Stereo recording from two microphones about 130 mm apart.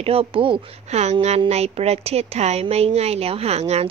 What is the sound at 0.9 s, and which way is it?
A woman's voice, 60° right (ahead or behind).